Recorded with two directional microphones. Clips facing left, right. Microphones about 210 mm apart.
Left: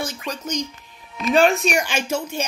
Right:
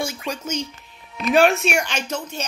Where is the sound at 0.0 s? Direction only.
10° right (ahead or behind).